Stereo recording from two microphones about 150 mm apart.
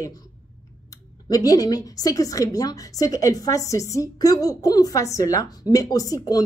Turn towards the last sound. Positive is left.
turn(degrees=25)  # may be behind; listen again after turning